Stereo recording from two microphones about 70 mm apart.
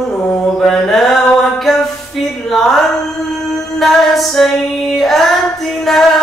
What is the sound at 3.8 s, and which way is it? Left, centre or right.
Music, centre.